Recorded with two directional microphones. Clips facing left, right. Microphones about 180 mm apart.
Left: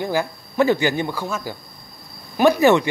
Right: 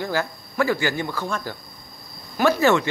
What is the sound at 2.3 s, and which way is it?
Speech, 15° left (ahead or behind).